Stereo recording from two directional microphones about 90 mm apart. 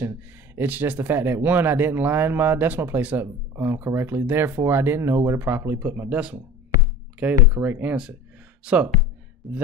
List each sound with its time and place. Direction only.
0.0 s speech: 25° right (ahead or behind)
7.9 s speech: 10° right (ahead or behind)